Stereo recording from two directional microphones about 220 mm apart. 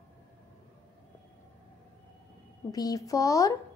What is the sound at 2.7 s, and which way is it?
Speech, 15° left (ahead or behind).